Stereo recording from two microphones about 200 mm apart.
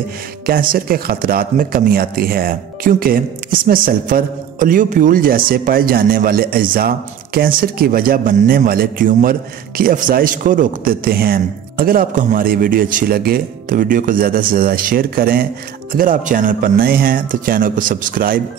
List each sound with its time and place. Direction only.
0.5 s speech: 45° right (ahead or behind)